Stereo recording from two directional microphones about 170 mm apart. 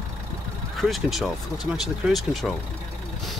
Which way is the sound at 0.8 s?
Centre (ahead or behind).